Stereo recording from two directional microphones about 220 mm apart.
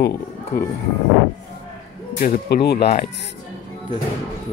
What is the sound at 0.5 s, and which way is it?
Speech, 40° left (ahead or behind).